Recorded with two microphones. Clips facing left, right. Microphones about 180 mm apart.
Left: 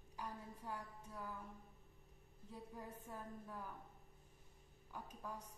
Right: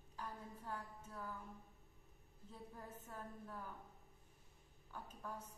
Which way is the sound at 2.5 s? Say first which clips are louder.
Left 2 dB; 10° left (ahead or behind).